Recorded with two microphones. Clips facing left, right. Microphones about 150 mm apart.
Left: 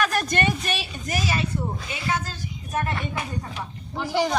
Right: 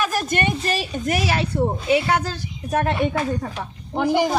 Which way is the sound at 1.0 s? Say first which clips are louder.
Right 4 dB; 65° right (ahead or behind).